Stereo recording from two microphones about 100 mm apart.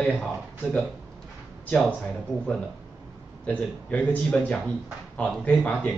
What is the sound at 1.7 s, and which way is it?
Speech, 15° left (ahead or behind).